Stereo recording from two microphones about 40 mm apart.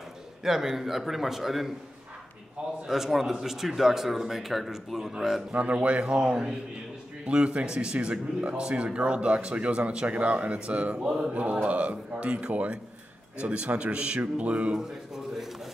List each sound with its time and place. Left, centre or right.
0.4 s speech: centre
2.9 s speech: centre
5.5 s speech: right
11.0 s speech: centre
11.3 s speech: right
14.8 s a sound: centre